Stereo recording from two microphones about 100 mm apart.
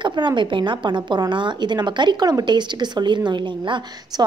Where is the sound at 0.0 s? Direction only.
50° right (ahead or behind).